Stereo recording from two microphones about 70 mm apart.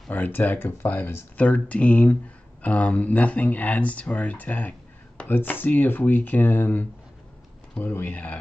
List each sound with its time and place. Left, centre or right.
0.1 s speech: left
7.9 s speech: left